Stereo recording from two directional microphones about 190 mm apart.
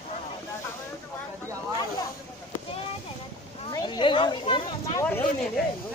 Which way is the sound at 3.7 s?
20° left (ahead or behind).